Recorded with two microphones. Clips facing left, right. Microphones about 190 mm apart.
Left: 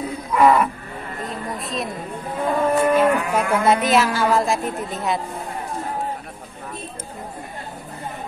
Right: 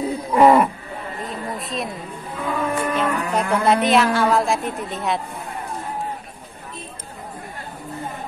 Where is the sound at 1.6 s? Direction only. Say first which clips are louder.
Left 1 dB; centre (ahead or behind).